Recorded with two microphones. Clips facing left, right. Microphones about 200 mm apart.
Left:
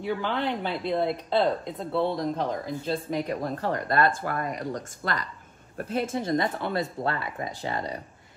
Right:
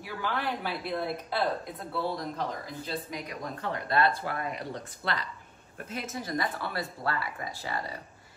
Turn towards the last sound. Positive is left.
turn(degrees=20)  # may be behind; listen again after turning